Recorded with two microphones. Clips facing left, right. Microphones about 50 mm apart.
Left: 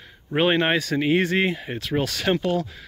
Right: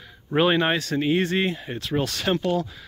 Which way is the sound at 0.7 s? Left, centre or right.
Left.